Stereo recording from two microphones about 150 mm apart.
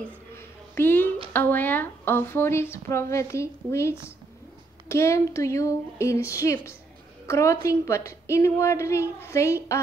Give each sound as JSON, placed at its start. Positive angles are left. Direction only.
{"t": 0.7, "sound": "a woman's voice", "side_deg": 15}